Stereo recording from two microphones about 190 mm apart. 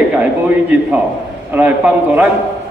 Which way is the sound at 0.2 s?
10° right (ahead or behind).